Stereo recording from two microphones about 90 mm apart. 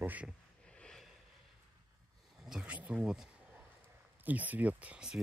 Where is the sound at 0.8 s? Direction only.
5° left (ahead or behind).